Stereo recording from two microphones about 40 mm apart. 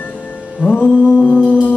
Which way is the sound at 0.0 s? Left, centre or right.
Left.